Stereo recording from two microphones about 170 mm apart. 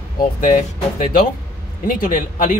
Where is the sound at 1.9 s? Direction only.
55° left (ahead or behind).